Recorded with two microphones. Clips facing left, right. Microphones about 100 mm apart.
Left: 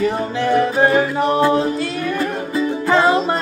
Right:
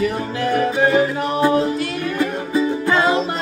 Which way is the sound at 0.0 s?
30° left (ahead or behind).